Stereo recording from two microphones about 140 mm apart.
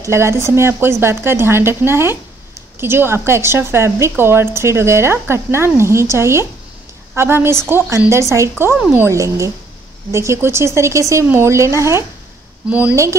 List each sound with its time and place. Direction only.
0.0 s a woman's voice: 20° right (ahead or behind)
8.7 s speech: 5° right (ahead or behind)
9.0 s a woman's voice: 20° right (ahead or behind)
12.6 s speech: 10° right (ahead or behind)